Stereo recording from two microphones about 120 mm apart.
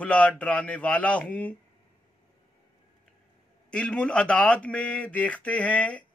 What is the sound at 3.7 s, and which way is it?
Speech, 10° left (ahead or behind).